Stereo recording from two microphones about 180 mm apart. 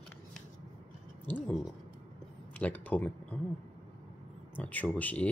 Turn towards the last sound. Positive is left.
turn(degrees=10)  # may be behind; listen again after turning